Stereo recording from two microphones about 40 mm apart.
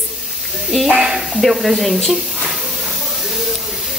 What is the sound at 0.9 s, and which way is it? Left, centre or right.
Speech, centre.